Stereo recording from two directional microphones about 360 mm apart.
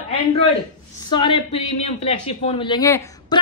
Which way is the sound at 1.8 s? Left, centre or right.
Centre.